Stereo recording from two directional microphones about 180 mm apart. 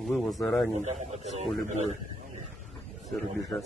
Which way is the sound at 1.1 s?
35° right (ahead or behind).